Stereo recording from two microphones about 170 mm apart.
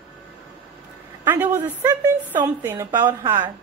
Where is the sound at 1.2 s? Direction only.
10° right (ahead or behind).